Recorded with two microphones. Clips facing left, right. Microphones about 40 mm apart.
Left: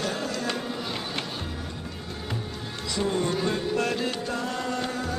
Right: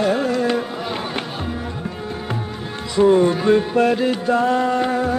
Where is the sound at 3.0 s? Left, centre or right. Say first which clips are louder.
Right 12 dB; right.